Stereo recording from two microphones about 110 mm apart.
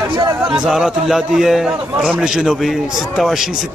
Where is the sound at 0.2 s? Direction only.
35° right (ahead or behind).